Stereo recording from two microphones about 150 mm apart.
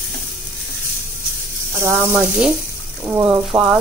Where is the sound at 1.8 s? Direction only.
10° right (ahead or behind).